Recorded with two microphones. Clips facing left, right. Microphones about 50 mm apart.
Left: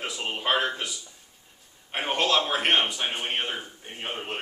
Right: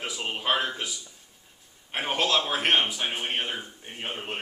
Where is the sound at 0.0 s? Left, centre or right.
Centre.